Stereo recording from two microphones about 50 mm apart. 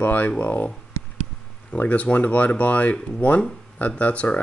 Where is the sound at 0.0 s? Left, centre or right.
Left.